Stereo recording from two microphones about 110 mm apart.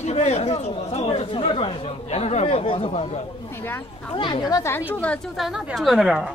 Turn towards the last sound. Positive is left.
turn(degrees=-5)  # may be behind; listen again after turning